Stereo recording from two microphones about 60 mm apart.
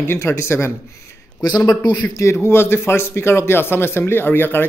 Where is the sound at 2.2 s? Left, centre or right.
Left.